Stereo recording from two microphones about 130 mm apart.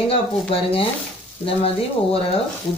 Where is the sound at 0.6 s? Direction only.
45° left (ahead or behind).